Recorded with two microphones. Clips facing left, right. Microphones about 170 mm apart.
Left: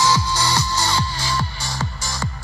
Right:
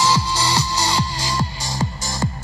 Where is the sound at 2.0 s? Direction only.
20° right (ahead or behind).